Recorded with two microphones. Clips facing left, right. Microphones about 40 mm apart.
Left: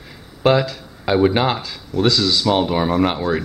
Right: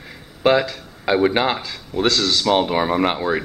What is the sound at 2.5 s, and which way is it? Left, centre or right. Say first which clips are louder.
Speech: even; centre.